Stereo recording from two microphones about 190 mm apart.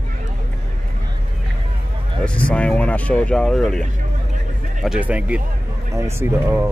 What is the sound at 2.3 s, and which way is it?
Speech, 5° left (ahead or behind).